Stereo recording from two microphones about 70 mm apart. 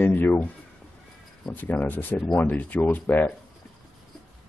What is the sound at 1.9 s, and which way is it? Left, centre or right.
Speech, left.